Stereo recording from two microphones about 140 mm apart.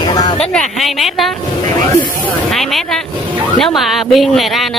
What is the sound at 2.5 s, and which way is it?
Speech, centre (ahead or behind).